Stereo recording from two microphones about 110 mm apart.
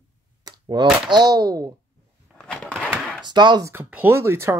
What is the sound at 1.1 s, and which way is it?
Speech, 35° right (ahead or behind).